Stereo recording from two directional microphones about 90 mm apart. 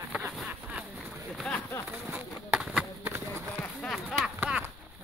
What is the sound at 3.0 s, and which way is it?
Run, 25° right (ahead or behind).